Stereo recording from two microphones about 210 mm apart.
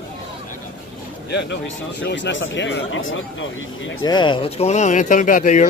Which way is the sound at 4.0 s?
20° left (ahead or behind).